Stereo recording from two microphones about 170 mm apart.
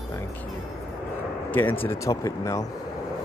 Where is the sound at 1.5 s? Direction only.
10° left (ahead or behind).